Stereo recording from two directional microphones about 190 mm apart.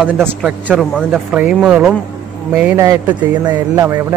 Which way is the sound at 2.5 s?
10° right (ahead or behind).